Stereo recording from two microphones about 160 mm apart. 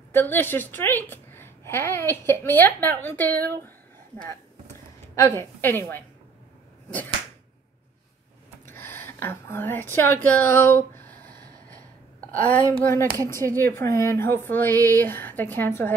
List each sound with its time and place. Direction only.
0.1 s a woman's voice: 10° left (ahead or behind)
5.1 s a woman's voice: 15° left (ahead or behind)
8.6 s speech: 15° left (ahead or behind)
12.3 s a woman's voice: 55° right (ahead or behind)
12.7 s a woman's voice: 15° left (ahead or behind)